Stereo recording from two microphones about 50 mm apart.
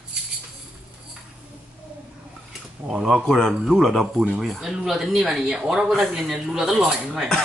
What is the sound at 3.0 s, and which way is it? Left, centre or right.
Speech, centre.